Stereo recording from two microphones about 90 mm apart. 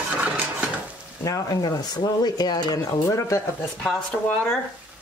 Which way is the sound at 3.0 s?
30° left (ahead or behind).